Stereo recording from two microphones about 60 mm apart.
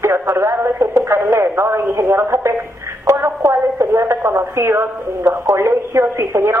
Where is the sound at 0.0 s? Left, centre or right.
Right.